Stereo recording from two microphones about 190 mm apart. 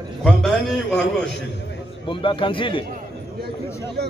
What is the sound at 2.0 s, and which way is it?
Speech, 25° left (ahead or behind).